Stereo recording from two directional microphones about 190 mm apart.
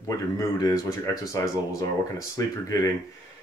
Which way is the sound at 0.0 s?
15° left (ahead or behind).